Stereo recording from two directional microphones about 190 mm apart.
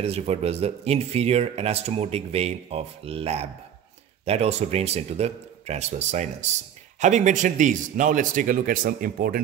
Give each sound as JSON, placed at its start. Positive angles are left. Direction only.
{"t": 0.0, "sound": "speech", "side_deg": -30}